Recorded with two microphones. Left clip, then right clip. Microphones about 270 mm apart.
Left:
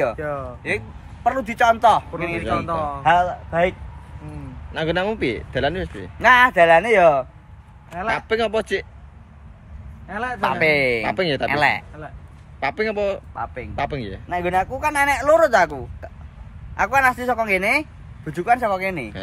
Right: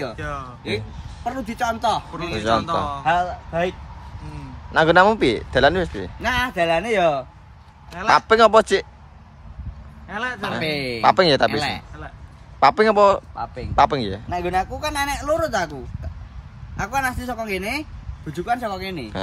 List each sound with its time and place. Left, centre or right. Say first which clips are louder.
0.0 s speech: left 6 dB; centre
4.8 s a man's voice: right 7 dB; centre
6.2 s speech: left 8 dB; centre
8.3 s a man's voice: right 8 dB; centre
10.0 s speech: left 4 dB; centre
11.1 s a man's voice: right 7 dB; centre
11.4 s speech: left 2 dB; centre
12.5 s a man's voice: right 8 dB; centre